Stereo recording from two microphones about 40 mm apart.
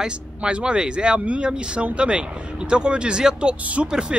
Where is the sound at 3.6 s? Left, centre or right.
Right.